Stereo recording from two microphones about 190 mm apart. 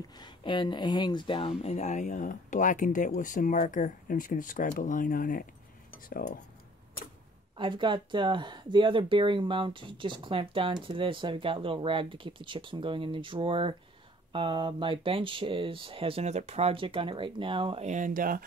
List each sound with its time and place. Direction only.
0.2 s speech: 25° left (ahead or behind); by 6.4 s 45° left (ahead or behind)
7.5 s speech: 25° right (ahead or behind); by 18.4 s 45° right (ahead or behind)